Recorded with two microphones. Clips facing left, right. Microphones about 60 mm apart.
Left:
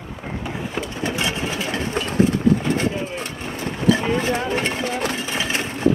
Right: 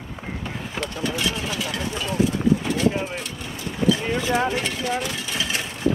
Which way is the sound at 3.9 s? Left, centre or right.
Left.